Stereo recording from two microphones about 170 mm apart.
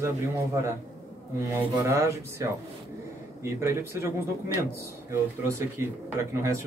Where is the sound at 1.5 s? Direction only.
15° right (ahead or behind).